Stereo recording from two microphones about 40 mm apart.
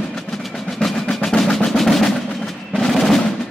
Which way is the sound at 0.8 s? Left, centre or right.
Centre.